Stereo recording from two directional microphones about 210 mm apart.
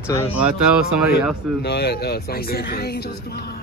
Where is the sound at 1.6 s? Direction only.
50° left (ahead or behind).